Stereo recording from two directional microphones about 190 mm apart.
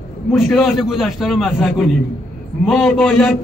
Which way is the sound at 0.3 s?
Centre (ahead or behind).